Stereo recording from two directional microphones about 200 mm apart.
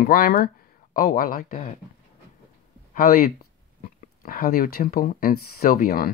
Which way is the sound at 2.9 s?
45° left (ahead or behind).